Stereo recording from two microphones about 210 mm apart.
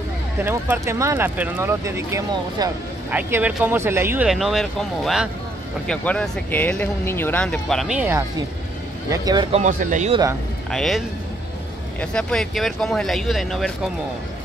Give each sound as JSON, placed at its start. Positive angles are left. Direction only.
{"t": 0.4, "sound": "speech", "side_deg": -10}
{"t": 9.6, "sound": "speech", "side_deg": -40}
{"t": 10.7, "sound": "speech", "side_deg": 0}